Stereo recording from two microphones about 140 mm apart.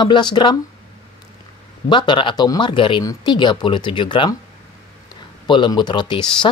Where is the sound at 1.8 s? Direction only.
35° left (ahead or behind).